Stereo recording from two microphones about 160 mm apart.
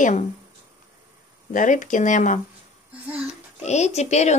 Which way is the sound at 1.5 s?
55° left (ahead or behind).